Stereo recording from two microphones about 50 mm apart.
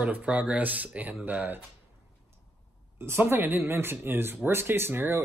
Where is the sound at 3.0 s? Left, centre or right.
Right.